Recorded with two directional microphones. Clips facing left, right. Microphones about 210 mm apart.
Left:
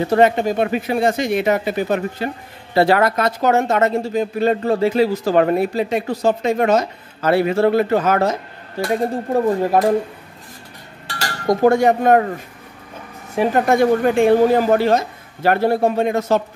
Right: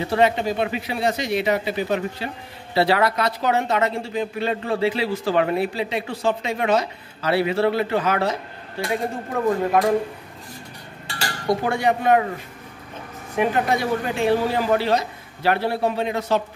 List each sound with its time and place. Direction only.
0.1 s speech: 50° left (ahead or behind)
11.4 s speech: 45° left (ahead or behind)
13.4 s speech: 45° left (ahead or behind)